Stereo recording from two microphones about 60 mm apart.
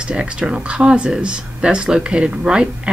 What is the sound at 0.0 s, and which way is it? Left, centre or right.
Speech, centre.